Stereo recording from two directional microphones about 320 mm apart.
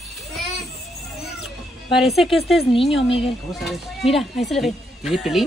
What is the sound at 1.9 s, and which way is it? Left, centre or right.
Speech, centre.